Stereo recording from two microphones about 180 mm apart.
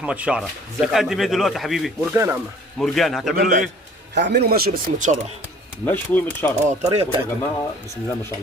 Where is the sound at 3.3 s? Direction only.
50° right (ahead or behind).